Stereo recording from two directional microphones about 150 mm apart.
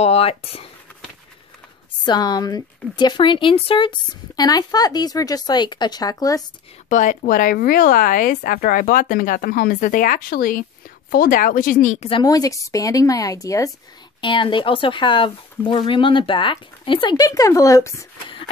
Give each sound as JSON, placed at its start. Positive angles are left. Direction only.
{"t": 0.0, "sound": "speech", "side_deg": 45}
{"t": 2.0, "sound": "speech", "side_deg": 25}
{"t": 6.9, "sound": "speech", "side_deg": 60}
{"t": 12.1, "sound": "speech", "side_deg": 25}
{"t": 14.2, "sound": "speech", "side_deg": 30}